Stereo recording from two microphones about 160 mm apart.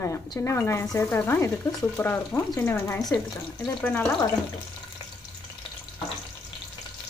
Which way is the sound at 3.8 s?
10° left (ahead or behind).